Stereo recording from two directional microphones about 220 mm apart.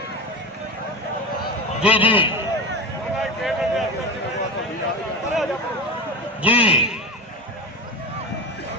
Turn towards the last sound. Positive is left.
turn(degrees=-5)  # may be behind; listen again after turning